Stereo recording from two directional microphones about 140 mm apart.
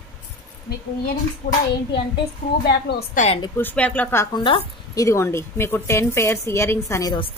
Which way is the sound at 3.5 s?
10° left (ahead or behind).